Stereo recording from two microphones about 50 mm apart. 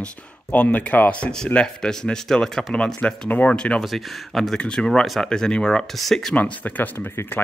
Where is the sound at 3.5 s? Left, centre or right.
Left.